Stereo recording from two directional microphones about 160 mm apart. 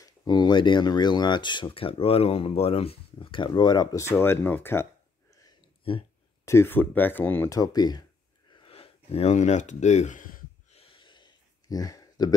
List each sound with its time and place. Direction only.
0.0 s speech: 25° left (ahead or behind)
4.1 s speech: 15° left (ahead or behind)
5.9 s speech: 35° left (ahead or behind)
6.4 s speech: 15° left (ahead or behind)
8.5 s a sound: 35° left (ahead or behind); by 10.8 s 50° left (ahead or behind)
10.8 s a sound: 30° left (ahead or behind)